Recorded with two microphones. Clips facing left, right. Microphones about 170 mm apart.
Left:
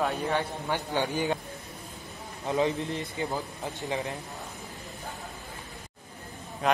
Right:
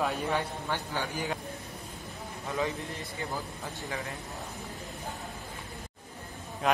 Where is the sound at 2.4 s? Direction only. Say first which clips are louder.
Left 6 dB; 20° left (ahead or behind).